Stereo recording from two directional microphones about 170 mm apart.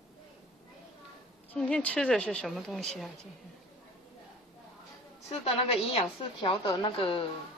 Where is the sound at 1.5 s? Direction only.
5° left (ahead or behind).